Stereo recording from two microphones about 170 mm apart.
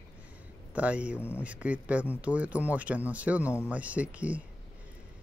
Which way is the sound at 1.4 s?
10° right (ahead or behind).